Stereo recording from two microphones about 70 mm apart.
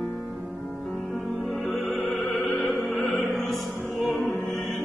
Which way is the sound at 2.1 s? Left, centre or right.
Centre.